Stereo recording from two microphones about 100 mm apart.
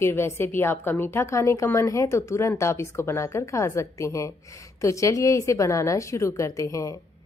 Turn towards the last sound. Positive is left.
turn(degrees=30)  # may be behind; listen again after turning